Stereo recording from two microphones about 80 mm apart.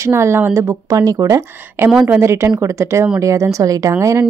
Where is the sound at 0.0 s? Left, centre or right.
Right.